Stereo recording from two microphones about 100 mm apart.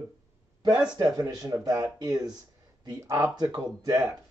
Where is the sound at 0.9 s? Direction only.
40° right (ahead or behind).